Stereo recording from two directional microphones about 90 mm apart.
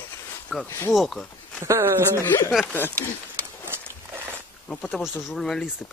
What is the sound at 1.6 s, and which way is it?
Speech, 30° right (ahead or behind).